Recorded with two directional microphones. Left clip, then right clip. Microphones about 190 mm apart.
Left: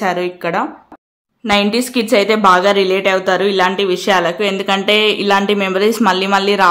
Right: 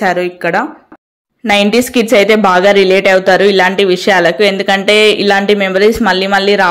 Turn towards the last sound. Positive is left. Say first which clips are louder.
# right 3 dB
turn(degrees=-5)  # may be behind; listen again after turning